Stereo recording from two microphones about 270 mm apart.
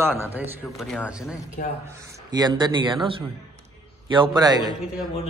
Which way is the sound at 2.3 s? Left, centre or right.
Centre.